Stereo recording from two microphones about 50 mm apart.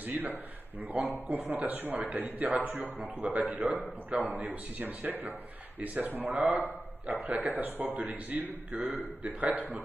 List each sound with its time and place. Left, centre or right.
0.0 s a man's voice: right